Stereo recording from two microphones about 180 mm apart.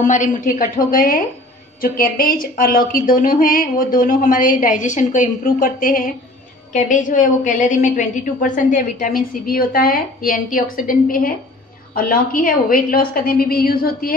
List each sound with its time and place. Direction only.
0.0 s a woman's voice: 45° left (ahead or behind)
9.5 s a woman's voice: 55° left (ahead or behind)